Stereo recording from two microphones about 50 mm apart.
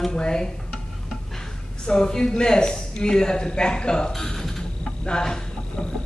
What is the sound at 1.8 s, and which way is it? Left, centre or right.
A man's voice, centre.